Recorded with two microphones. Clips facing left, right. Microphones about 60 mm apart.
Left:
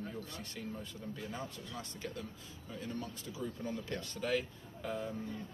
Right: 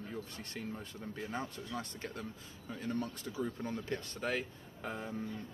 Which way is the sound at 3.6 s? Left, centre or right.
Right.